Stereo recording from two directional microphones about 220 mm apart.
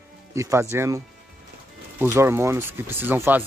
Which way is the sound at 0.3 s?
15° right (ahead or behind).